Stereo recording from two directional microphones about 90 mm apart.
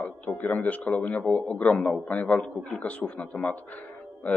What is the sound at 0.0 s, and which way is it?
A man's voice, 20° left (ahead or behind).